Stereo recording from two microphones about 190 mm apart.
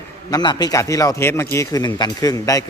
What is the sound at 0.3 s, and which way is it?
A man's voice, 20° left (ahead or behind).